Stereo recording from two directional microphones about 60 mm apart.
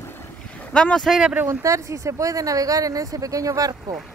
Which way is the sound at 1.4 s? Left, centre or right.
Right.